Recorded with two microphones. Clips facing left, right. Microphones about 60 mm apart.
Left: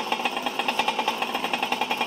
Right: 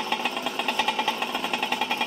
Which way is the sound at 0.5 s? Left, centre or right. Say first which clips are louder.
Left 1 dB; left.